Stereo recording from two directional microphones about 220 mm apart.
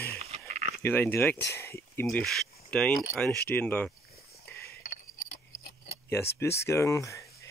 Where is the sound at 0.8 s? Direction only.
10° left (ahead or behind).